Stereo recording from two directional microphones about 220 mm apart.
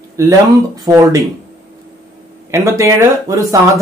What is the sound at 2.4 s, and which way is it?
Speech, 15° right (ahead or behind).